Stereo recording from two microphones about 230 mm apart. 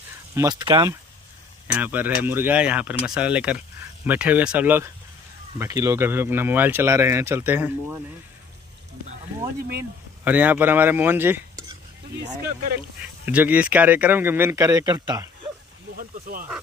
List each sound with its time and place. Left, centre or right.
0.3 s speech: centre
1.7 s speech: centre
10.2 s speech: centre
13.2 s speech: centre
16.0 s snake: right